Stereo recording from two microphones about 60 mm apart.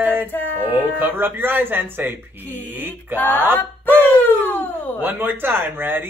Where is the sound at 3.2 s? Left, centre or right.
Left.